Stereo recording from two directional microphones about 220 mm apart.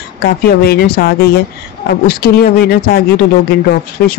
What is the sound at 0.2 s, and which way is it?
Speech, 45° left (ahead or behind).